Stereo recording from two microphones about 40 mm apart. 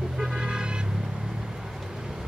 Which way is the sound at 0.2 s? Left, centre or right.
Centre.